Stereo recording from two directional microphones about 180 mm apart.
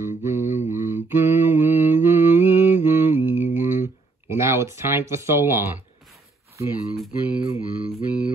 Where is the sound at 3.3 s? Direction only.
10° right (ahead or behind).